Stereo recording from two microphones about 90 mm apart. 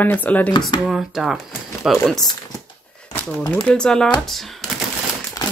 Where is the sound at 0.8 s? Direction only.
5° right (ahead or behind).